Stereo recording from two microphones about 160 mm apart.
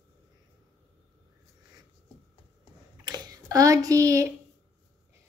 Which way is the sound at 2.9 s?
25° right (ahead or behind).